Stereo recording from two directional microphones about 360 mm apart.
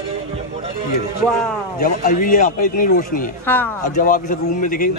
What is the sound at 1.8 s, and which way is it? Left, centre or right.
A man's voice, left.